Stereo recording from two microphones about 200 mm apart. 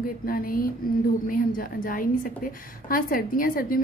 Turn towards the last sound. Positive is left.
turn(degrees=45)  # may be behind; listen again after turning